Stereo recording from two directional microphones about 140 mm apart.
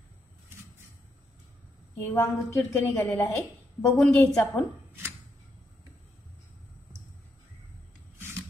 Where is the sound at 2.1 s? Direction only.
20° left (ahead or behind).